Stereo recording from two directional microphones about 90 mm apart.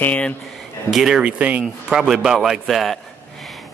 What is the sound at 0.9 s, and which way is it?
A man's voice, 5° right (ahead or behind).